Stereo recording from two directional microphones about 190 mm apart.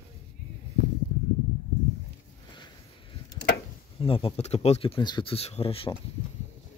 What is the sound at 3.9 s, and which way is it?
Speech, 30° left (ahead or behind).